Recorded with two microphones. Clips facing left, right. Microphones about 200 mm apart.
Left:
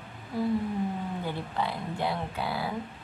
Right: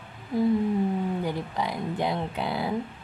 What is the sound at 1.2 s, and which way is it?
Speech, 15° right (ahead or behind).